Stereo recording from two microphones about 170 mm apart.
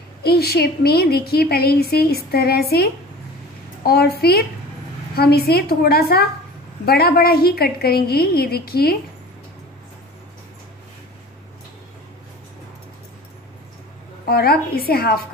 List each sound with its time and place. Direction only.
0.2 s a woman's voice: 65° left (ahead or behind)
14.2 s a woman's voice: 65° left (ahead or behind)